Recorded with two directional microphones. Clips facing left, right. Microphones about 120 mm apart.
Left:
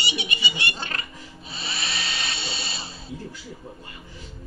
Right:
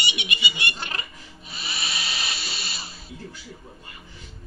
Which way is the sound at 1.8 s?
5° right (ahead or behind).